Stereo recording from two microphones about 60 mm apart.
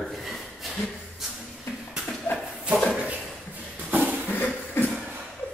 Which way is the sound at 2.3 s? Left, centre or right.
Left.